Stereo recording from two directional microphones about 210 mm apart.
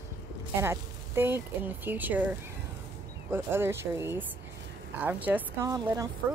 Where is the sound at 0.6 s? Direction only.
10° right (ahead or behind).